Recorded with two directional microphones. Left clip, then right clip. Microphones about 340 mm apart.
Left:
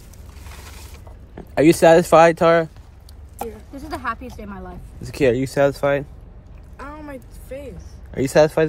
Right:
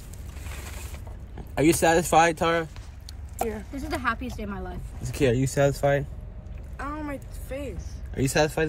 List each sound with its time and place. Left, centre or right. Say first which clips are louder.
1.5 s speech: left 9 dB; left
3.7 s a woman's voice: left 4 dB; centre
5.0 s speech: left 6 dB; left
6.8 s a sound: right 1 dB; centre
7.4 s speech: left 1 dB; centre
8.1 s speech: left 9 dB; centre